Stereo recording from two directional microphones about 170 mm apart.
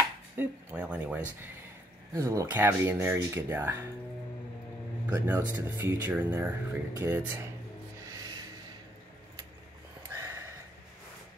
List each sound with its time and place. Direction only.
0.4 s speech: 10° right (ahead or behind)
5.1 s speech: 15° right (ahead or behind)
8.0 s music: 20° right (ahead or behind)
10.1 s sniff: 15° right (ahead or behind)